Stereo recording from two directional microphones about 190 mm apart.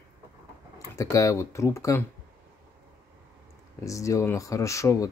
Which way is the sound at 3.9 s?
15° left (ahead or behind).